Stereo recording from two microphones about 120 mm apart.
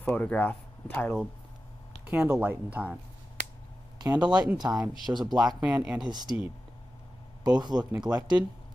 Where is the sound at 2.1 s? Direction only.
10° right (ahead or behind).